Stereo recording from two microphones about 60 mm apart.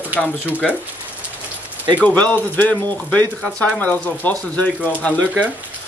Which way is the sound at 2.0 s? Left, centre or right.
Left.